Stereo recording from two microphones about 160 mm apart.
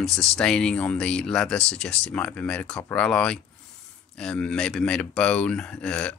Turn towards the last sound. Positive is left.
turn(degrees=10)  # may be behind; listen again after turning